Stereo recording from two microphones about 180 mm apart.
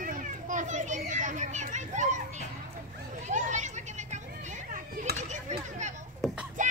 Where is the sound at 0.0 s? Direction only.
45° right (ahead or behind).